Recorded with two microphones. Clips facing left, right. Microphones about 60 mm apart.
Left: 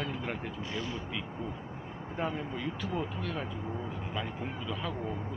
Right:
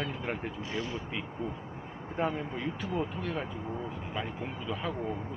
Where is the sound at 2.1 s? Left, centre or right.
Centre.